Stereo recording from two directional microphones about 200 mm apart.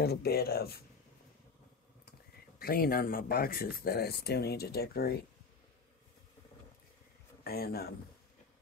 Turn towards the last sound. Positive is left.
turn(degrees=50)  # may be behind; listen again after turning